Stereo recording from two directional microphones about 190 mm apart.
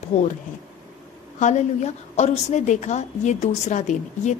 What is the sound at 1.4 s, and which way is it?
A woman's voice, 35° left (ahead or behind).